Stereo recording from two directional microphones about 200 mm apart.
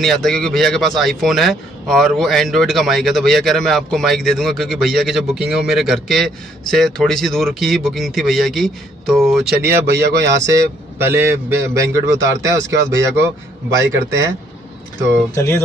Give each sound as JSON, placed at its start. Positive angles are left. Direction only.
{"t": 0.0, "sound": "a man's voice", "side_deg": 0}
{"t": 9.6, "sound": "speech", "side_deg": -15}
{"t": 15.3, "sound": "speech", "side_deg": 10}